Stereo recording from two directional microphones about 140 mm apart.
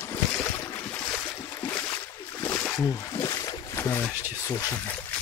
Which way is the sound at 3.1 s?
20° left (ahead or behind).